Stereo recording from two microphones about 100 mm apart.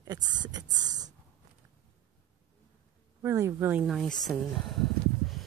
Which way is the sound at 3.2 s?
25° right (ahead or behind).